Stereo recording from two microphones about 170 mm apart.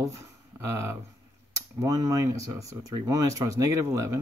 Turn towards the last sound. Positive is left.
turn(degrees=-15)  # may be behind; listen again after turning